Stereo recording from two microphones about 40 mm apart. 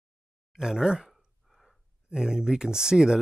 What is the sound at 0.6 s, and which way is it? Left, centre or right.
Speech, centre.